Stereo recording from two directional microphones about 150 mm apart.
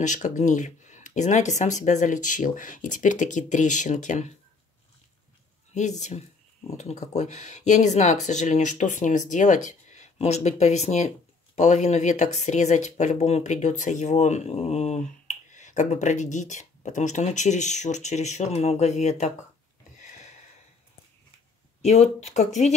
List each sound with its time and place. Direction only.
0.0 s speech: 55° left (ahead or behind)
5.8 s speech: 50° left (ahead or behind)
21.8 s speech: 45° left (ahead or behind)